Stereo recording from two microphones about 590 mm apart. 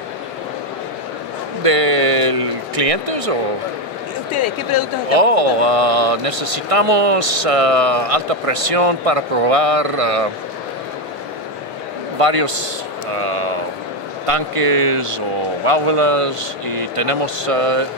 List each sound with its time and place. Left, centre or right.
1.6 s a man's voice: right
5.1 s a man's voice: right
12.2 s a man's voice: right